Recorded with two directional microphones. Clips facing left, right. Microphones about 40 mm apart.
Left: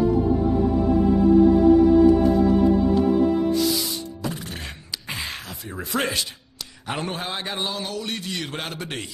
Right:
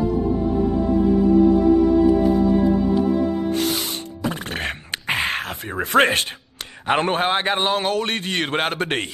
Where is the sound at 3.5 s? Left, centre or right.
Right.